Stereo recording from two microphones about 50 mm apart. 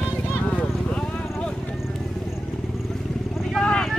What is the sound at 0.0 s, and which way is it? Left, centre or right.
Clip-clop, left.